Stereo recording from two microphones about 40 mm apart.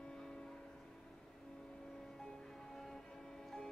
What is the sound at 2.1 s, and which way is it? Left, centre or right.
Music, centre.